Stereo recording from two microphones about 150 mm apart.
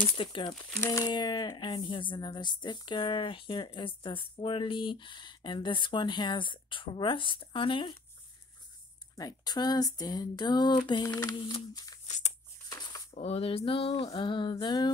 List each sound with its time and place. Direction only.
0.2 s speech: 30° left (ahead or behind)
0.7 s speech: 20° left (ahead or behind)
9.1 s speech: 25° left (ahead or behind)
13.1 s speech: 40° left (ahead or behind)